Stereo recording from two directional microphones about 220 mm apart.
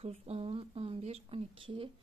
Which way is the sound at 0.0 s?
25° right (ahead or behind).